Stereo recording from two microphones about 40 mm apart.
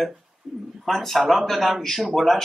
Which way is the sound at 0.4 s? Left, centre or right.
Centre.